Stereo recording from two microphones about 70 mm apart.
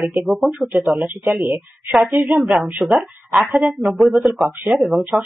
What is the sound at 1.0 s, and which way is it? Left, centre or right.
Speech, right.